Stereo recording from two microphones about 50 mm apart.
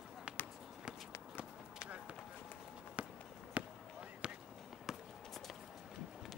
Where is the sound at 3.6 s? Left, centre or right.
Right.